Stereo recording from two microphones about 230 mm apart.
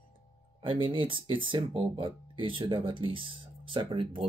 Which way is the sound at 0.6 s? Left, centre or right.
Right.